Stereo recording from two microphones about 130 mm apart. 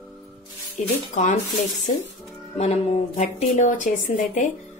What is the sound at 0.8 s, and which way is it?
Speech, 65° left (ahead or behind).